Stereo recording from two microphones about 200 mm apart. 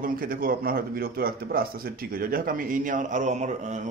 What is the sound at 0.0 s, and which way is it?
A man's voice, 45° right (ahead or behind).